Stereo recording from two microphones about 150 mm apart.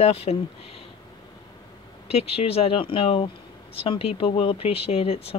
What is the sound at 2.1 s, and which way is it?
Speech, 40° left (ahead or behind).